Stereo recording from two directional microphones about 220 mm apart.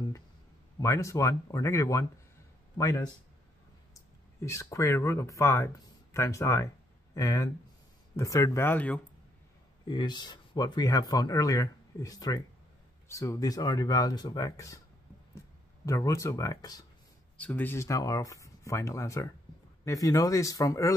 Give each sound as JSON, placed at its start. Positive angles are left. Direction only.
{"t": 0.7, "sound": "speech", "side_deg": 15}
{"t": 9.8, "sound": "speech", "side_deg": 20}